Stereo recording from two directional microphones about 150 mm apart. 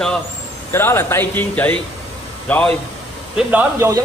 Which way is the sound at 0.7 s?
15° left (ahead or behind).